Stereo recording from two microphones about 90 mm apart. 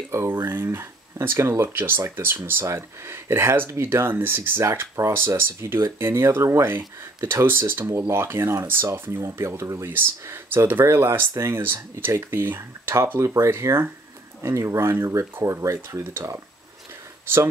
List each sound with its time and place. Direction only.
0.1 s speech: 30° right (ahead or behind)